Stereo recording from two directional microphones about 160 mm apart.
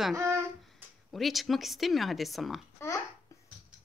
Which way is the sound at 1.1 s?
Centre (ahead or behind).